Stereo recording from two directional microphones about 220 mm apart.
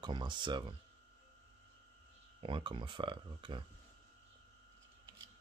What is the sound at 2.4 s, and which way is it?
Speech, 25° right (ahead or behind).